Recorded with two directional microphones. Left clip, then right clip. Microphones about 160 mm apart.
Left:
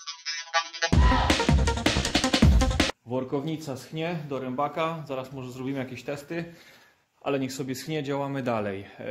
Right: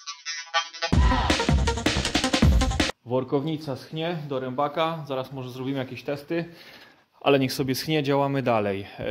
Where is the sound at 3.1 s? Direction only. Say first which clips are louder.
Right 4 dB; 50° right (ahead or behind).